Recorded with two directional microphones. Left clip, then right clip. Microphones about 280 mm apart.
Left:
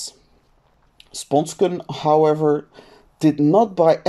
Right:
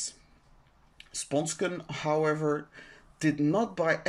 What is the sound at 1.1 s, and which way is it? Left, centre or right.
Speech, centre.